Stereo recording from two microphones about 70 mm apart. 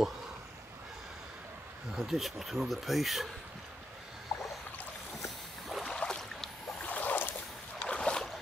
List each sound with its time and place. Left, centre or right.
2.0 s speech: centre
5.7 s rowboat: centre
5.9 s boat: centre
6.9 s boat: left
7.8 s boat: centre